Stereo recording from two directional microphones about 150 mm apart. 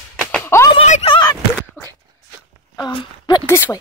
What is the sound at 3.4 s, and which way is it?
Speech, 20° left (ahead or behind).